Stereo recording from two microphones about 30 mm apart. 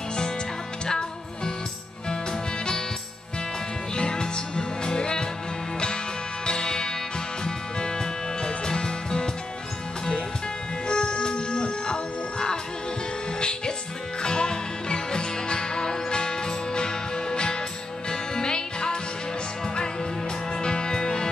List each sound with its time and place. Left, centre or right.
0.8 s music: left
3.9 s music: left
6.4 s music: left
10.9 s music: left
20.5 s music: left